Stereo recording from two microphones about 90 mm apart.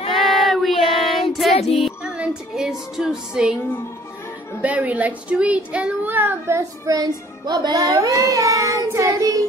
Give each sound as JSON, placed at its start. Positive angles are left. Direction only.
{"t": 0.1, "sound": "child singing", "side_deg": 0}
{"t": 1.3, "sound": "music", "side_deg": 0}
{"t": 4.6, "sound": "a child's voice", "side_deg": -15}
{"t": 6.9, "sound": "music", "side_deg": -45}